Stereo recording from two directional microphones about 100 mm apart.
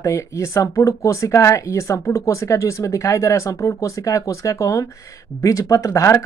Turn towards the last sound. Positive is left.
turn(degrees=30)  # may be behind; listen again after turning